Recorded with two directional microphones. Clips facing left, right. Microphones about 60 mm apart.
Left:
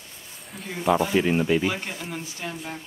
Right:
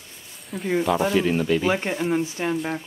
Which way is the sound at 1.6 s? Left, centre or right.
Right.